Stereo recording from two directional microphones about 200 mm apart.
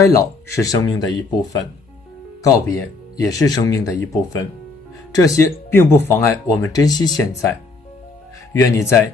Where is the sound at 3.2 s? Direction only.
15° left (ahead or behind).